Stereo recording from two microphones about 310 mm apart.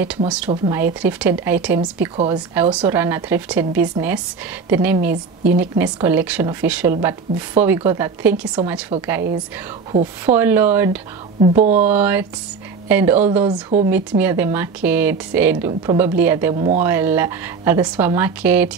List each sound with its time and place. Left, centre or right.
0.5 s a woman's voice: centre
10.2 s a woman's voice: centre
11.4 s speech: right
11.8 s a woman's voice: centre
16.5 s a woman's voice: centre
16.8 s a woman's voice: centre